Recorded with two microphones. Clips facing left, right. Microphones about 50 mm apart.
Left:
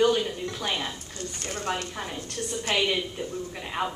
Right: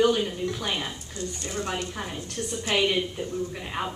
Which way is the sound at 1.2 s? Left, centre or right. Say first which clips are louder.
Right 4 dB; left.